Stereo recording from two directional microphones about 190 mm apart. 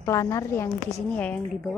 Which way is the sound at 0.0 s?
15° left (ahead or behind).